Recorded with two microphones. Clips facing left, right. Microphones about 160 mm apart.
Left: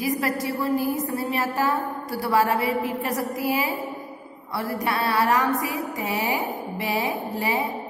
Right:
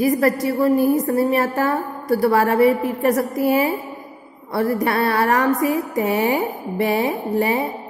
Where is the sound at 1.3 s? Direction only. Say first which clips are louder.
Right 5 dB; 55° right (ahead or behind).